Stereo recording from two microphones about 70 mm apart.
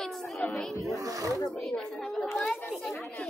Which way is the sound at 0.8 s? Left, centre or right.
Right.